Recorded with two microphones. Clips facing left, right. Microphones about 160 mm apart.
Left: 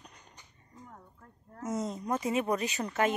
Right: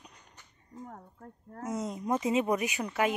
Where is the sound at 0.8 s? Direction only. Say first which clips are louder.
Right 6 dB; 50° right (ahead or behind).